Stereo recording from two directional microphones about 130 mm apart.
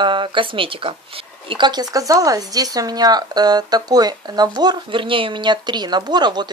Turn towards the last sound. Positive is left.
turn(degrees=-35)  # may be behind; listen again after turning